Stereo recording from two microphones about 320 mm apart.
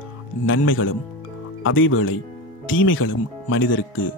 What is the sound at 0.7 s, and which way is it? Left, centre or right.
Speech, left.